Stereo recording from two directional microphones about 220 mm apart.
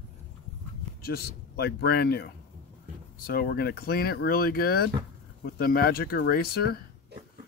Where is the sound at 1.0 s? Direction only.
45° left (ahead or behind).